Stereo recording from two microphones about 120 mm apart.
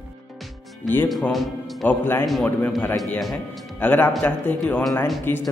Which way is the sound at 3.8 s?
15° left (ahead or behind).